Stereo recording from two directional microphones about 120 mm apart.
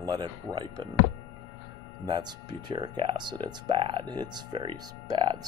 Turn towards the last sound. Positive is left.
turn(degrees=-35)  # may be behind; listen again after turning